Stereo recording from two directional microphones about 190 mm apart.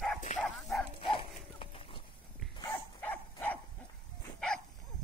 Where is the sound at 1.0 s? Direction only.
30° left (ahead or behind).